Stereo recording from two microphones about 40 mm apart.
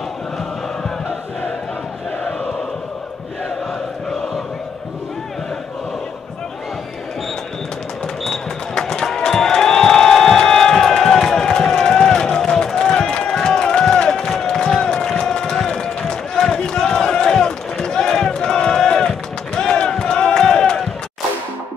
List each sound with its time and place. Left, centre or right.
8.2 s music: centre
8.8 s run: centre
9.1 s crowd: centre
14.3 s a sound: centre
15.0 s run: centre
19.9 s crowd: centre